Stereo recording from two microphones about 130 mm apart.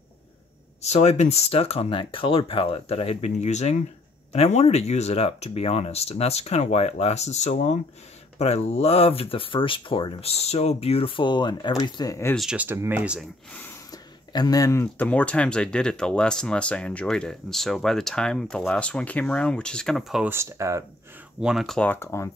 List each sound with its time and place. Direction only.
0.8 s speech: 55° left (ahead or behind); by 12.4 s 25° left (ahead or behind)
12.4 s speech: 5° right (ahead or behind)
12.6 s speech: 15° right (ahead or behind)
14.3 s speech: 30° left (ahead or behind); by 20.2 s 5° right (ahead or behind)
20.2 s speech: 20° right (ahead or behind)
21.4 s speech: 5° right (ahead or behind)
21.8 s speech: 15° left (ahead or behind)